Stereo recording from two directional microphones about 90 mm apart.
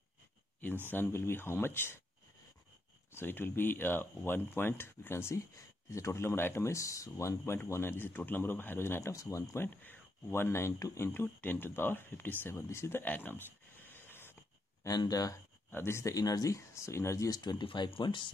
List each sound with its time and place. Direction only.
0.6 s speech: 20° left (ahead or behind)
3.1 s speech: 25° left (ahead or behind)
9.1 s speech: 35° left (ahead or behind)
13.0 s a sound: 20° left (ahead or behind)
14.8 s speech: 40° left (ahead or behind)
15.7 s speech: 25° left (ahead or behind)
17.3 s speech: 55° left (ahead or behind)
17.6 s speech: 70° left (ahead or behind)